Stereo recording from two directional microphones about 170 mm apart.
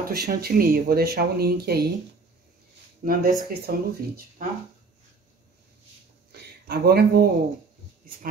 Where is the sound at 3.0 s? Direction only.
55° right (ahead or behind).